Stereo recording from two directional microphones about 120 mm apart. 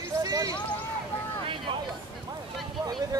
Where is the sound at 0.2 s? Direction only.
30° right (ahead or behind).